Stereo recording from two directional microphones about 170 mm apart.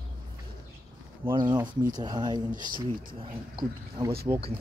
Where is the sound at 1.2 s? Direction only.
30° right (ahead or behind).